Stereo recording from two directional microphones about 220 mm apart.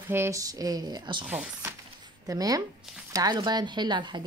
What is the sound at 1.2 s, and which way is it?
Speech, 5° right (ahead or behind).